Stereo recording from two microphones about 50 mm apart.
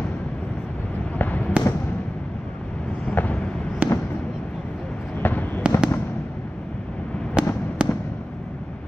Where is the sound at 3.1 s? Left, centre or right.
Left.